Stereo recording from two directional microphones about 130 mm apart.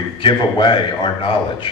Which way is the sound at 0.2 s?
40° left (ahead or behind).